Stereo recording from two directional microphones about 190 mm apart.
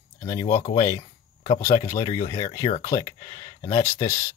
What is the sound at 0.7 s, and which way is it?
Speech, 20° left (ahead or behind).